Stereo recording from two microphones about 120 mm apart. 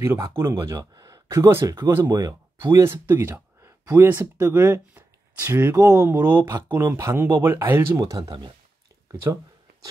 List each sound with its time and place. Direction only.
0.0 s speech: 20° right (ahead or behind)
8.3 s speech: 40° right (ahead or behind)